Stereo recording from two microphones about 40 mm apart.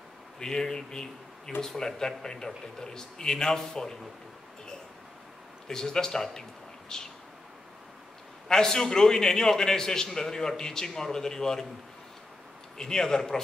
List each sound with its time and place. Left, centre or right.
0.4 s a man's voice: centre
5.7 s a man's voice: centre
8.5 s a man's voice: centre
12.7 s a man's voice: centre